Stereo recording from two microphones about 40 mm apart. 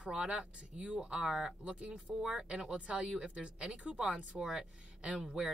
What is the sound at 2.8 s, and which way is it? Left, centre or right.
Speech, right.